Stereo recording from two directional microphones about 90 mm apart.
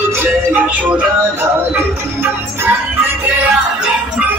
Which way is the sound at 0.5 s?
15° right (ahead or behind).